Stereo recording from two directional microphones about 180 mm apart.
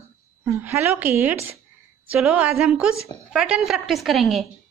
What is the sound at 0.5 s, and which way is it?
A woman's voice, 10° right (ahead or behind).